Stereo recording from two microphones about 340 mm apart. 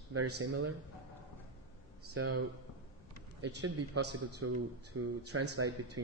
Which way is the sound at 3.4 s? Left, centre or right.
Right.